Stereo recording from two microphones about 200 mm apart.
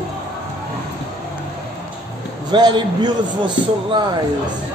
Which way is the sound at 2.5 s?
20° right (ahead or behind).